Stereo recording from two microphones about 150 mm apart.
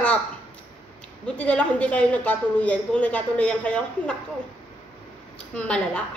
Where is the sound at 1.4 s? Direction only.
10° left (ahead or behind).